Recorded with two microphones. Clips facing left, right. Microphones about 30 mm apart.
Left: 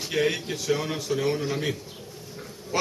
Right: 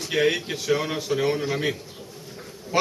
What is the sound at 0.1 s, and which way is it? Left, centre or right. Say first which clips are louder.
A man's voice: right 3 dB; centre.